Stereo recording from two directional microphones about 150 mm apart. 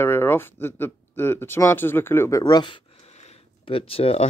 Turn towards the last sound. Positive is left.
turn(degrees=40)  # may be behind; listen again after turning